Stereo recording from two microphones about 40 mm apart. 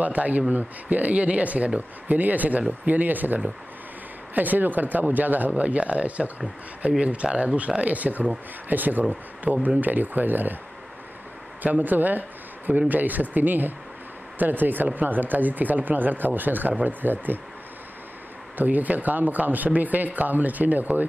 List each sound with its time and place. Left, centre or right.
0.0 s speech: right
5.6 s speech: right
11.6 s speech: right
18.6 s speech: right